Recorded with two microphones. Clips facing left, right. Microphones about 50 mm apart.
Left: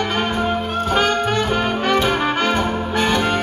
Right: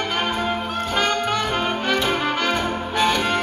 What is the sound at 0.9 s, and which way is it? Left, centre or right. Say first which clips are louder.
Music: left 3 dB; left.